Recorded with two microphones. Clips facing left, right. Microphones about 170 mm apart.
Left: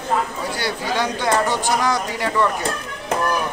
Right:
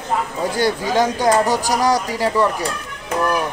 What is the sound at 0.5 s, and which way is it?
Speech, 45° right (ahead or behind).